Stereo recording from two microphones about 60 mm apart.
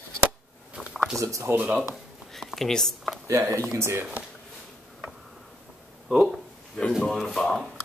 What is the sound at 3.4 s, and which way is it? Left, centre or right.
Speech, right.